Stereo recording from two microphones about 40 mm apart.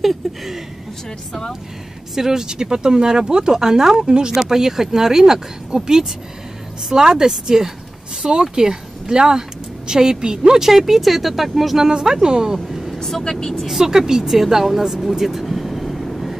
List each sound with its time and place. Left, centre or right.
0.0 s a sound: centre
2.1 s speech: centre
11.9 s speech: centre
12.5 s vehicle: centre
13.2 s speech: centre
13.7 s speech: centre
15.0 s vehicle: centre